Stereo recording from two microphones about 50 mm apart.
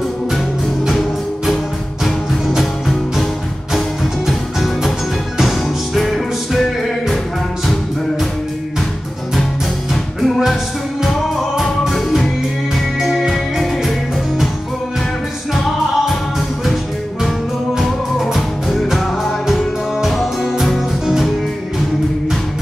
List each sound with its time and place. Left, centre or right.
0.8 s music: centre
4.3 s music: centre
10.2 s music: centre
15.5 s music: centre
17.7 s music: centre